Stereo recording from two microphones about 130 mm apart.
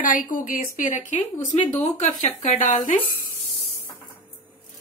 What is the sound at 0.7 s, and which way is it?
Speech, 75° left (ahead or behind).